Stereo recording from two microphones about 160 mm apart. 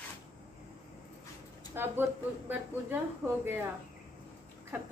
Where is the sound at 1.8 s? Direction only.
15° right (ahead or behind).